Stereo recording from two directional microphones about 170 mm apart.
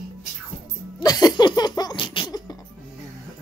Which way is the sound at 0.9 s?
25° left (ahead or behind).